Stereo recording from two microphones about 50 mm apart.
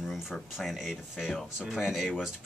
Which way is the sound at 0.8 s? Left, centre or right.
Centre.